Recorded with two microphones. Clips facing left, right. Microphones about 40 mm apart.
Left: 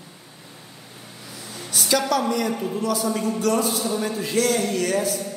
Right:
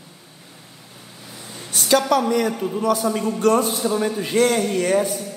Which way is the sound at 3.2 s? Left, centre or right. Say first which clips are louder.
Right 5 dB; right.